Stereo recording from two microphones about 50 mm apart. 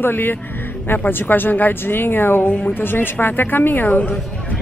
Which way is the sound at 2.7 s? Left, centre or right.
Left.